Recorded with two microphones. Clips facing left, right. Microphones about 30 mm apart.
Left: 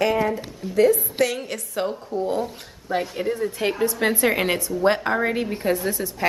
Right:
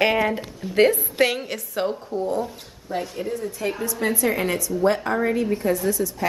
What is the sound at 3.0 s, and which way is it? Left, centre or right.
Speech, left.